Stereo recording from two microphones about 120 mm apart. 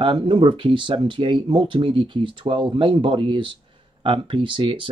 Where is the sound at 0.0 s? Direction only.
45° right (ahead or behind).